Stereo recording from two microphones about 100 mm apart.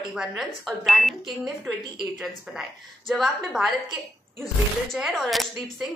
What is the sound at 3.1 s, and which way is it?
Speech, centre (ahead or behind).